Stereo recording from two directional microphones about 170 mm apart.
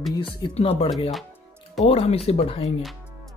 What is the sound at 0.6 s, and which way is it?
Speech, 35° left (ahead or behind).